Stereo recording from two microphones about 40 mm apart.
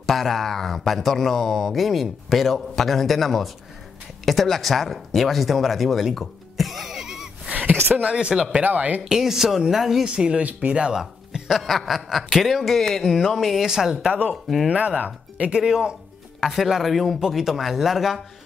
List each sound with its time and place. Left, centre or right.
0.0 s speech: centre
6.1 s music: centre
7.9 s speech: right
8.6 s speech: right
9.1 s speech: centre
10.0 s speech: right
11.3 s a sound: centre
11.6 s speech: centre
13.7 s speech: centre
14.7 s speech: right
15.6 s speech: centre
16.3 s speech: centre